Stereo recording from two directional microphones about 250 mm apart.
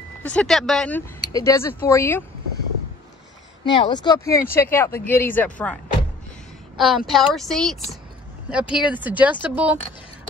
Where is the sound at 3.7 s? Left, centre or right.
Centre.